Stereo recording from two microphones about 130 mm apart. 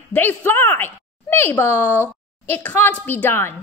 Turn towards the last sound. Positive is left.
turn(degrees=15)  # may be behind; listen again after turning